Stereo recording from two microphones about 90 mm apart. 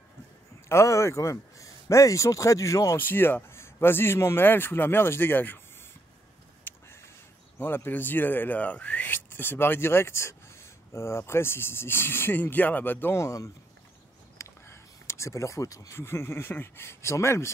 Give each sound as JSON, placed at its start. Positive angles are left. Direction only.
{"t": 0.7, "sound": "speech", "side_deg": 30}
{"t": 3.0, "sound": "speech", "side_deg": 25}
{"t": 6.6, "sound": "a sound", "side_deg": 30}
{"t": 7.5, "sound": "speech", "side_deg": 25}